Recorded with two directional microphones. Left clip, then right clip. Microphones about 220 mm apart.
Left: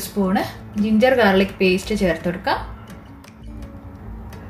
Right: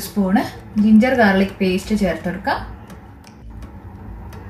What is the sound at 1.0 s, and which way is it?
A woman's voice, 45° left (ahead or behind).